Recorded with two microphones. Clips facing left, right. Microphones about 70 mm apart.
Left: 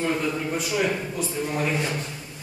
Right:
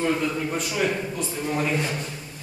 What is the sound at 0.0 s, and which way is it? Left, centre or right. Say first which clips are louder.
A man's voice: right 1 dB; centre.